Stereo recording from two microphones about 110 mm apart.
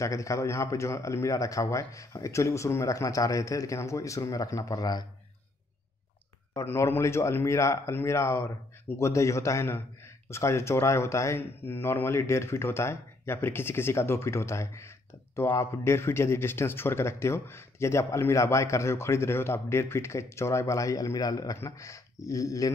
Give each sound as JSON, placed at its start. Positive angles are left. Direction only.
{"t": 0.0, "sound": "a man's voice", "side_deg": 30}
{"t": 6.5, "sound": "a man's voice", "side_deg": 25}